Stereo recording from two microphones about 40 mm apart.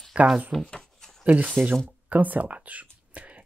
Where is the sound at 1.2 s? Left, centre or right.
Right.